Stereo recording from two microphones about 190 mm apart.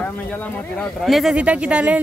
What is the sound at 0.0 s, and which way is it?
Speech, 10° left (ahead or behind).